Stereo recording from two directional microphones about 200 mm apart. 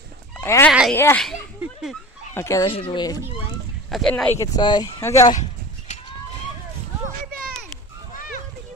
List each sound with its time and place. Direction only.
0.4 s speech: 10° left (ahead or behind)
2.3 s speech: 15° left (ahead or behind)
2.6 s speech: 25° left (ahead or behind)
3.9 s speech: 5° left (ahead or behind)
4.6 s speech: 20° left (ahead or behind)
5.3 s a sound: 35° left (ahead or behind)